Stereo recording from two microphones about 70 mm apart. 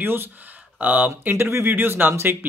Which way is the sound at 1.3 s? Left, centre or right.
Right.